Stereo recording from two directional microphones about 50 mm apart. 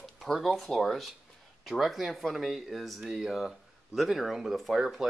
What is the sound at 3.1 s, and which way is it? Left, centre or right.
Speech, centre.